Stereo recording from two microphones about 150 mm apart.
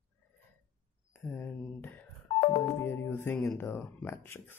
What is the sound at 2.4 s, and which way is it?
Music, 45° left (ahead or behind).